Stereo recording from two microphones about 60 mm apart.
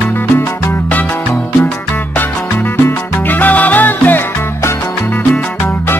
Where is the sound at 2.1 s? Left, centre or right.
Left.